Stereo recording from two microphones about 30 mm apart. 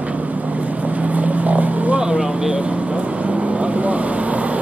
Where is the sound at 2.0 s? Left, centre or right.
Right.